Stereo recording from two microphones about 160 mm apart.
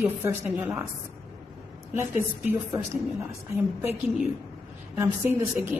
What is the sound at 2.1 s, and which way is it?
Speech, 15° right (ahead or behind).